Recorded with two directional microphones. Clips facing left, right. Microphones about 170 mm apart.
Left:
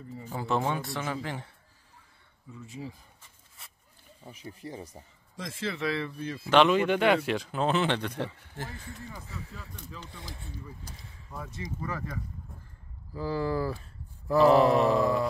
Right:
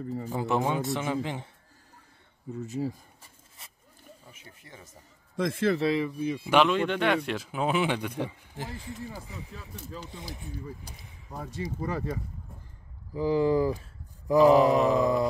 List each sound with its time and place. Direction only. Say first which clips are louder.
0.3 s a man's voice: right 1 dB; 15° right (ahead or behind)
2.5 s speech: right 9 dB; 45° right (ahead or behind)
4.3 s speech: left 15 dB; 35° left (ahead or behind)
5.3 s a man's voice: right 9 dB; 55° right (ahead or behind)
5.9 s speech: right 5 dB; 15° right (ahead or behind)
6.7 s speech: left 2 dB; 5° left (ahead or behind); by 11.3 s 15° right (ahead or behind)
11.3 s speech: right 4 dB; 35° right (ahead or behind)
13.1 s speech: right 6 dB; 15° right (ahead or behind)
14.2 s mantra: right 2 dB; 15° right (ahead or behind)
14.9 s a man's voice: right 1 dB; 20° right (ahead or behind)